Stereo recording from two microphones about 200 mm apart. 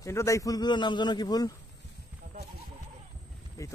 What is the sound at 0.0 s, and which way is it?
A man's voice, 15° left (ahead or behind).